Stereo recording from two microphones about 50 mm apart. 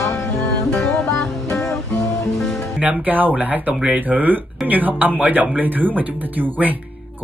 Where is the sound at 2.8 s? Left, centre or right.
Right.